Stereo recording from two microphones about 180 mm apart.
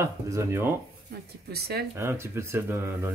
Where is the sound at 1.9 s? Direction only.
15° right (ahead or behind).